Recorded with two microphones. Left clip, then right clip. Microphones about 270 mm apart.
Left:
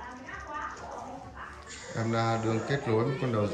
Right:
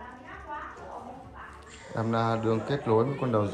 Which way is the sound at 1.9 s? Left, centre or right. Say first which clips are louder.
Right 2 dB; centre.